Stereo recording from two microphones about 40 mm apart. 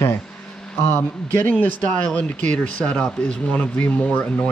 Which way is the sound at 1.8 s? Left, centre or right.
Left.